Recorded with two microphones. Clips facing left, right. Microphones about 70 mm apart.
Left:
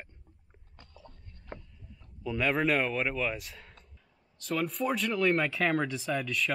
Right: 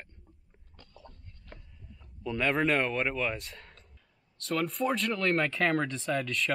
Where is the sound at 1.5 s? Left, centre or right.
Left.